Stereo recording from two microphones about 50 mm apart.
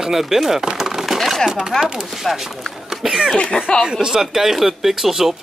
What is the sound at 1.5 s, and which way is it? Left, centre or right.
Speech, centre.